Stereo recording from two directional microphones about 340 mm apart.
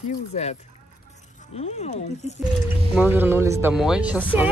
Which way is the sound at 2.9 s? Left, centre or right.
Centre.